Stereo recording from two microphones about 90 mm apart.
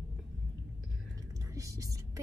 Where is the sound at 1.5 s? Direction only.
40° right (ahead or behind).